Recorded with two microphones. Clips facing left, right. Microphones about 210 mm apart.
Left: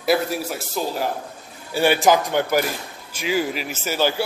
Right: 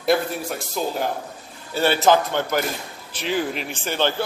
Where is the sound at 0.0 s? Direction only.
5° left (ahead or behind).